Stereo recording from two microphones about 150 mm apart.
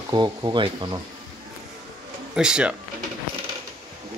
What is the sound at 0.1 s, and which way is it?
Speech, 30° right (ahead or behind).